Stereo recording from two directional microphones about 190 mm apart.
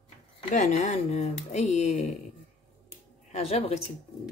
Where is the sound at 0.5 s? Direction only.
40° left (ahead or behind).